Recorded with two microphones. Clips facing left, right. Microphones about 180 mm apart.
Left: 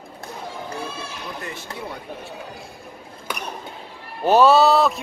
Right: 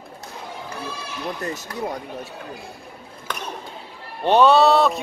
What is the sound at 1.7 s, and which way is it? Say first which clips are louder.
Speech: right 3 dB; 25° left (ahead or behind).